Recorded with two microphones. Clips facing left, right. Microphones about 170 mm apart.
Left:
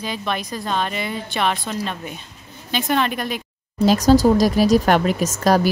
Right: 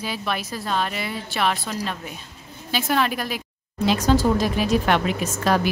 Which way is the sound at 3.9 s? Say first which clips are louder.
Left 5 dB; 40° left (ahead or behind).